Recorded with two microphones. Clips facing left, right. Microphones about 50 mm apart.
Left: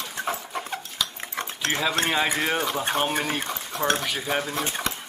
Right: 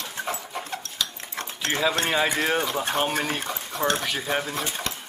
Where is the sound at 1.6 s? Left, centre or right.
Centre.